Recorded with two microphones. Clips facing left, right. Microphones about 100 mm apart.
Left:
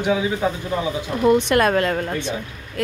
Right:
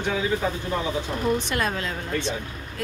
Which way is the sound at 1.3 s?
65° left (ahead or behind).